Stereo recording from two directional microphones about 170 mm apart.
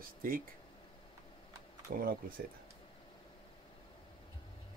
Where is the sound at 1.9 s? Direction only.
55° right (ahead or behind).